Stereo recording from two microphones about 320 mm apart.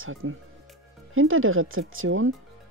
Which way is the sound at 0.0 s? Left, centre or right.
Right.